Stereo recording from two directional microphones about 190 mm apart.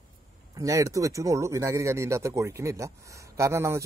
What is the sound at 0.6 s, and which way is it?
Speech, 15° right (ahead or behind).